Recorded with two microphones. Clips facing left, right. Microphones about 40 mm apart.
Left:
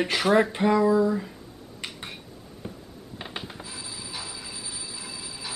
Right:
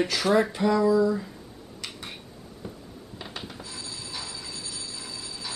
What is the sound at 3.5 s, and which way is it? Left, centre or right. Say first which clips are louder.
Telephone bell ringing: even; centre.